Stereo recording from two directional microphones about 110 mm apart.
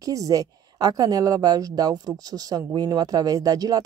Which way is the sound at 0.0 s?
30° right (ahead or behind).